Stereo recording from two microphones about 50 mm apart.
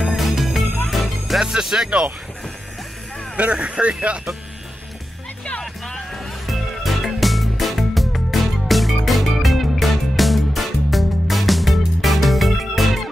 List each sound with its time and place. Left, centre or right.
0.0 s music: centre
1.4 s speech: centre
3.3 s speech: right
5.6 s music: centre
6.4 s music: centre